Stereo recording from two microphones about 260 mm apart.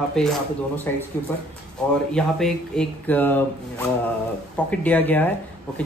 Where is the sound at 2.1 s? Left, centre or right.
Centre.